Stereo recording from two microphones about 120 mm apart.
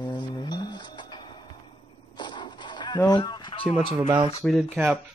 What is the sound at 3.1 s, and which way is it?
Speech, 35° left (ahead or behind).